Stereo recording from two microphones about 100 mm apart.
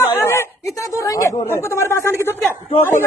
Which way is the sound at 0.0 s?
25° left (ahead or behind).